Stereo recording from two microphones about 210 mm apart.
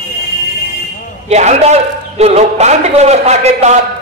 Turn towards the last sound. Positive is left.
turn(degrees=-30)  # may be behind; listen again after turning